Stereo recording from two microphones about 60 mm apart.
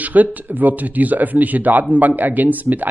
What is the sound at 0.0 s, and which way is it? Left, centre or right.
Speech, right.